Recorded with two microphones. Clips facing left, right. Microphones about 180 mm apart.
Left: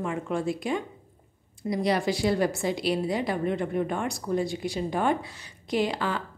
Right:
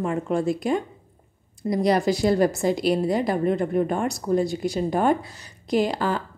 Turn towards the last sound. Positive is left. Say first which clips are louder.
# right 4 dB
turn(degrees=-40)  # may be behind; listen again after turning